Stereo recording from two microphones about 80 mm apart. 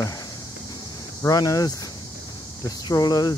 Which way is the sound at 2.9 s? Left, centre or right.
Left.